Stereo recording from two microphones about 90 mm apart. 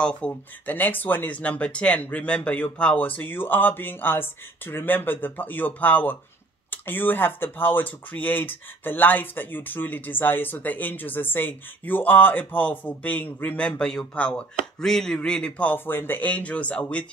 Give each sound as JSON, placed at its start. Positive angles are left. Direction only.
{"t": 0.0, "sound": "speech", "side_deg": 15}